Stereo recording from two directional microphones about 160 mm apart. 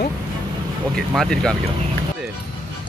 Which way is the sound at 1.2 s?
5° left (ahead or behind).